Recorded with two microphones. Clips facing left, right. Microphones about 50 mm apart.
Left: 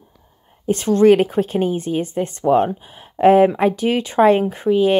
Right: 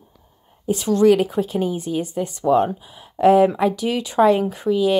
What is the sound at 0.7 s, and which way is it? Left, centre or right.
Speech, left.